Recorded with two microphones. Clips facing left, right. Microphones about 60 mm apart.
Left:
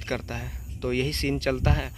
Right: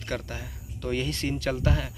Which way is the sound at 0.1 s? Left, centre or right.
Left.